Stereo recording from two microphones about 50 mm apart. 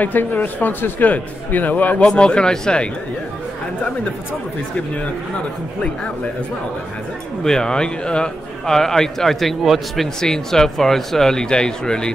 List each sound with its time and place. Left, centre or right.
0.0 s a man's voice: left
2.0 s a man's voice: centre
7.4 s a man's voice: centre
10.2 s a man's voice: centre